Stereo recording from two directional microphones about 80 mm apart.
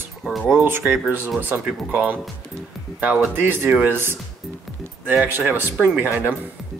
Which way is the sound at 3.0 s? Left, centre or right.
Right.